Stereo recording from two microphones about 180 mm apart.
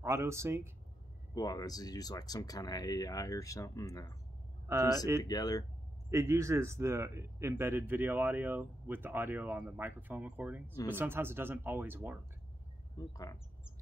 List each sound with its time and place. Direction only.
0.0 s speech: 15° right (ahead or behind)
1.3 s speech: 20° left (ahead or behind)
4.6 s speech: 15° right (ahead or behind)
5.2 s speech: 20° left (ahead or behind)
6.0 s speech: 15° right (ahead or behind)
12.9 s speech: 20° left (ahead or behind)